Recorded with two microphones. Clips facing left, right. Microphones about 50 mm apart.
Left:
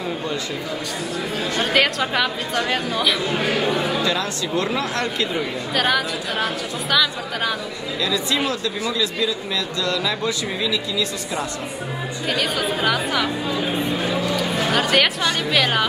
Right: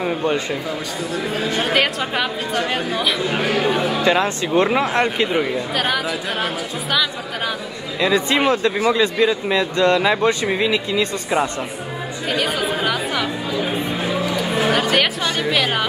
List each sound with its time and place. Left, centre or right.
0.0 s speech: right
1.6 s speech: centre
3.4 s speech: centre
4.0 s speech: right
5.8 s speech: centre
8.0 s speech: right
12.3 s music: centre
14.8 s chatter: centre
15.5 s speech: centre